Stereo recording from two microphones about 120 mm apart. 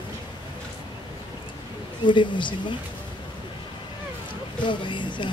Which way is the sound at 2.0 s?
40° left (ahead or behind).